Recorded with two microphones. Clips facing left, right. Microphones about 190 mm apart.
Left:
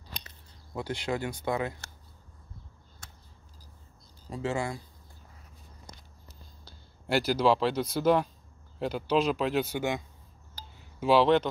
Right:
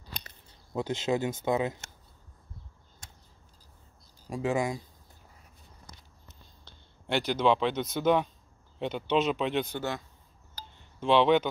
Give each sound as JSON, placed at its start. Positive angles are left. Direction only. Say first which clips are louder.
{"t": 0.7, "sound": "speech", "louder": "right 3 dB", "side_deg": -20}
{"t": 4.3, "sound": "speech", "louder": "right 3 dB", "side_deg": -15}
{"t": 6.6, "sound": "speech", "louder": "left 2 dB", "side_deg": 5}